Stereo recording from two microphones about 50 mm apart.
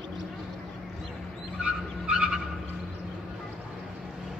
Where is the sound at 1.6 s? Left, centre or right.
Right.